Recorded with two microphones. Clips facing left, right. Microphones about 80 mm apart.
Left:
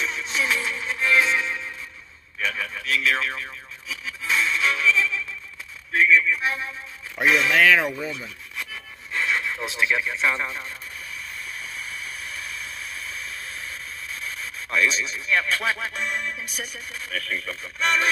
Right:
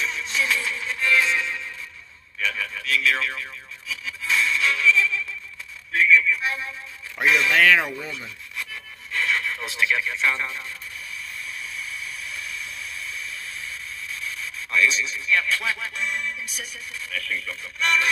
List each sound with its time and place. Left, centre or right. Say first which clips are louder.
0.0 s music: even; left
2.3 s radio: even; centre
3.9 s music: even; left
5.9 s a sound: even; left
7.2 s speech: even; centre
7.5 s speech: even; centre
9.1 s speech: even; centre
11.6 s vehicle: even; left
14.2 s speech: even; left
16.4 s speech: left 2 dB; left